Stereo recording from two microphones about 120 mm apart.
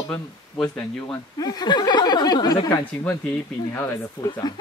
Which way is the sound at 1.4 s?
35° left (ahead or behind).